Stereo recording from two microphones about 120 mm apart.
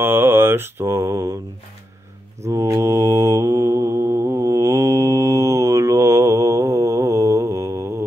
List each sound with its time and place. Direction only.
0.0 s mantra: 20° right (ahead or behind)
2.4 s mantra: 25° right (ahead or behind)